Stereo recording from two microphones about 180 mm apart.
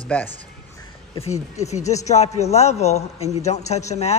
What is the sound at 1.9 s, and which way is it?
A man's voice, 40° left (ahead or behind).